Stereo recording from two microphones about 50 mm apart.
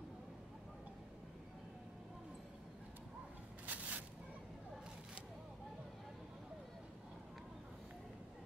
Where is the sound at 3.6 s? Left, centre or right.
Right.